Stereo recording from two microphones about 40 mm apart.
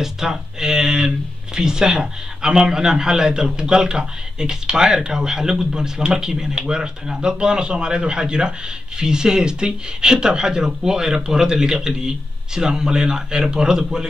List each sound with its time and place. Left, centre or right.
0.0 s speech: centre